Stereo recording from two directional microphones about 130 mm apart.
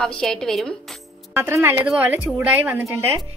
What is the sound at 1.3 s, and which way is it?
A woman's voice, 20° right (ahead or behind).